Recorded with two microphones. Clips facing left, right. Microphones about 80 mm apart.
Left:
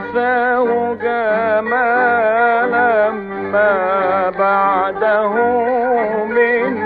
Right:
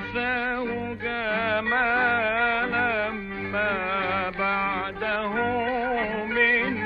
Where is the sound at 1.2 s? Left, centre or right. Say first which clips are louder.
Left 9 dB; left.